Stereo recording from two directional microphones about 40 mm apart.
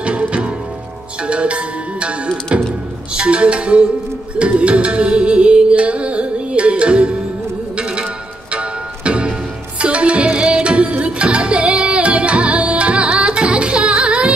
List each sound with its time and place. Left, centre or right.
0.0 s music: right
8.5 s music: right